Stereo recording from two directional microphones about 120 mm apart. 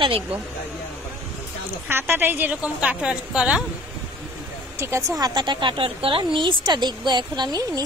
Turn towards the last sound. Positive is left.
turn(degrees=-30)  # may be behind; listen again after turning